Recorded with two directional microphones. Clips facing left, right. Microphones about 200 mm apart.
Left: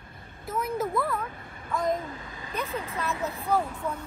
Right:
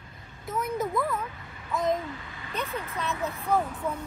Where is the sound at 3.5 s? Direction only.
Centre (ahead or behind).